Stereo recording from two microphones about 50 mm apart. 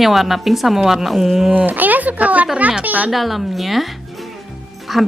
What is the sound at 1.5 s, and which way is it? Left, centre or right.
Speech, right.